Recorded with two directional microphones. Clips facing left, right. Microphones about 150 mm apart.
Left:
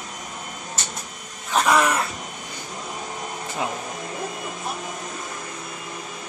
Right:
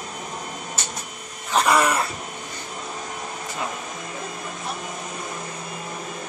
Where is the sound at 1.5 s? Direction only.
Centre (ahead or behind).